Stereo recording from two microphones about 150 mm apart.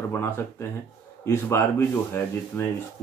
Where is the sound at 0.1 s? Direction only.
15° left (ahead or behind).